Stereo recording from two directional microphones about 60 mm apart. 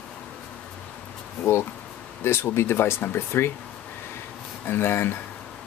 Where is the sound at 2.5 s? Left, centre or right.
Left.